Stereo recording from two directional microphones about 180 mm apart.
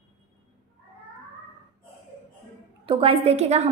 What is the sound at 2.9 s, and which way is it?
Speech, 30° right (ahead or behind).